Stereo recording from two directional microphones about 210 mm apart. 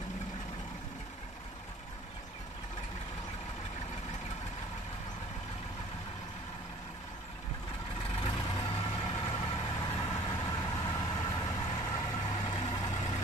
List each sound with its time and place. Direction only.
8.2 s vehicle: 20° left (ahead or behind)